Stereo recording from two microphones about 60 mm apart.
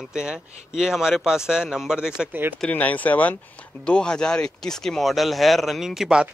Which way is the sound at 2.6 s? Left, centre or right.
Left.